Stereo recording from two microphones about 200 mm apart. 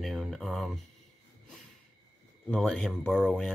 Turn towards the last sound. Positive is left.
turn(degrees=0)  # may be behind; listen again after turning